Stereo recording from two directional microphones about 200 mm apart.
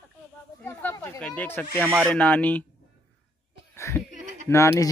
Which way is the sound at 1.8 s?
10° right (ahead or behind).